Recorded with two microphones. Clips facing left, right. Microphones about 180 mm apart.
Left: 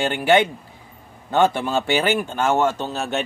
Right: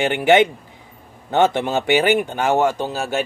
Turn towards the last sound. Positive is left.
turn(degrees=-10)  # may be behind; listen again after turning